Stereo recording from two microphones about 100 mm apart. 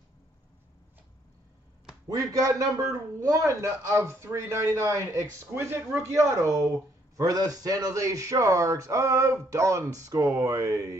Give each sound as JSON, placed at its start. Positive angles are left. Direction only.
{"t": 2.0, "sound": "a man's voice", "side_deg": -35}